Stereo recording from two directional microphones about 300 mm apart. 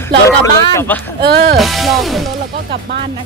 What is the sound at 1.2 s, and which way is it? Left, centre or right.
Music, right.